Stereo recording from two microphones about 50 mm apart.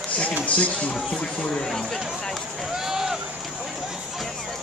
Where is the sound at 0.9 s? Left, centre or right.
Centre.